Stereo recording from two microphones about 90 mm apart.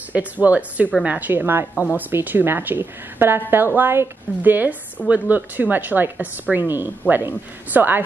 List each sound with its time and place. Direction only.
0.1 s a woman's voice: 15° right (ahead or behind)